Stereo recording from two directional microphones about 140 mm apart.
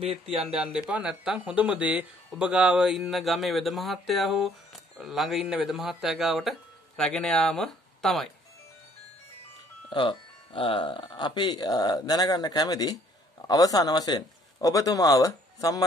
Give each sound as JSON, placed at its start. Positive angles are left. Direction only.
{"t": 0.0, "sound": "speech", "side_deg": -45}
{"t": 0.4, "sound": "speech", "side_deg": -5}
{"t": 9.8, "sound": "speech", "side_deg": 35}